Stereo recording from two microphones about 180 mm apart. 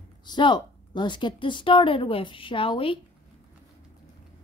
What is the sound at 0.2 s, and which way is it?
A woman's voice, 25° left (ahead or behind).